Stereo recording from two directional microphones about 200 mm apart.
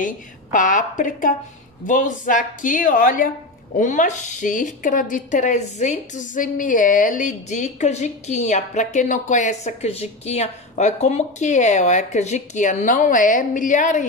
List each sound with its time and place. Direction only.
0.0 s a woman's voice: 40° left (ahead or behind)